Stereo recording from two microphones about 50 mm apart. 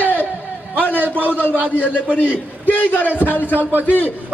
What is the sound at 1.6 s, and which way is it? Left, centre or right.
Speech, right.